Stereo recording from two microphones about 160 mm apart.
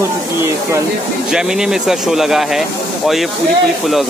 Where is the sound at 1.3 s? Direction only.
5° right (ahead or behind).